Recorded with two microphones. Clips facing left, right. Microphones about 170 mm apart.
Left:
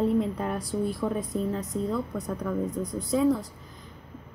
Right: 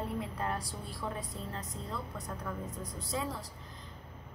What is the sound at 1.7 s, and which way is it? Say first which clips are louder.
Speech: left 15 dB; 65° left (ahead or behind).